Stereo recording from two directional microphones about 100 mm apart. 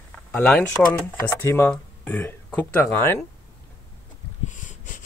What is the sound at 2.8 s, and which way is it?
Speech, 25° left (ahead or behind).